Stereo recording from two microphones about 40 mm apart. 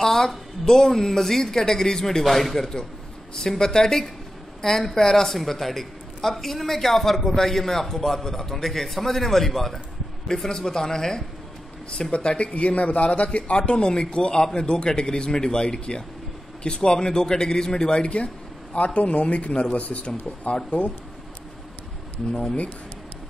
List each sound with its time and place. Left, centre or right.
0.0 s a man's voice: centre
12.1 s a man's voice: left
22.3 s a man's voice: centre